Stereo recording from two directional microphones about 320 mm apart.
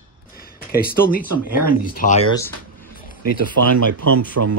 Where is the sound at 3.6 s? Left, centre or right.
Right.